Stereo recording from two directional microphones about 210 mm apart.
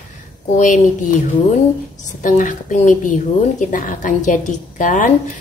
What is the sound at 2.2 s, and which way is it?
A woman's voice, 35° left (ahead or behind).